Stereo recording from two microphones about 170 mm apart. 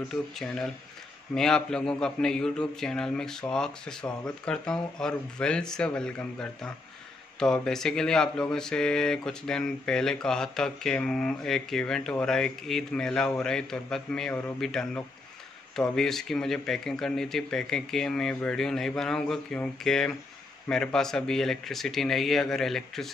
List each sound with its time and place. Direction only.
0.1 s speech: 5° left (ahead or behind)